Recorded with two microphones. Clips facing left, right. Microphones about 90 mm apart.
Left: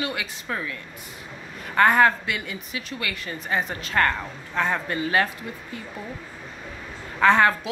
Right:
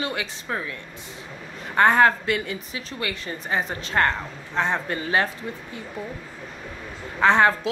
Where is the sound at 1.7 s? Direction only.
30° right (ahead or behind).